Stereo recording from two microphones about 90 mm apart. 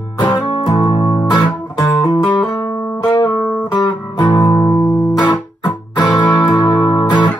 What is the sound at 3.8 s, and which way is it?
Music, 50° left (ahead or behind).